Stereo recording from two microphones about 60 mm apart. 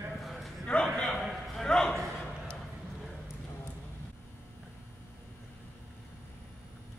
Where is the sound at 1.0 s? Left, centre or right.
Centre.